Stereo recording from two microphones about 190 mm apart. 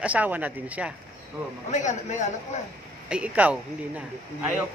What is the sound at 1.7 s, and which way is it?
Speech, 40° left (ahead or behind).